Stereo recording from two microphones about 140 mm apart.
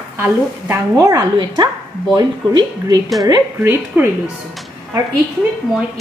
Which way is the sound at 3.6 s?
15° right (ahead or behind).